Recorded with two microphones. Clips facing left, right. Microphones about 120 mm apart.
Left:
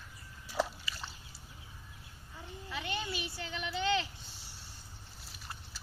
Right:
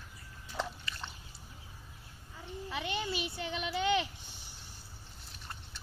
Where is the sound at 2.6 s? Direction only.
20° right (ahead or behind).